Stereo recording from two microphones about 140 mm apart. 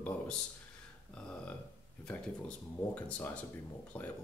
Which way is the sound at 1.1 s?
5° left (ahead or behind).